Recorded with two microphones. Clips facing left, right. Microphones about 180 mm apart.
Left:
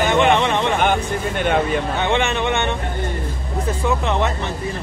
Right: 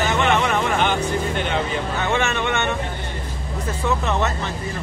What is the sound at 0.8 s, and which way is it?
Speech, 55° left (ahead or behind).